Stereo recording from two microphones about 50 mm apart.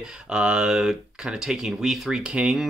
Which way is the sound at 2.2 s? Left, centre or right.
Centre.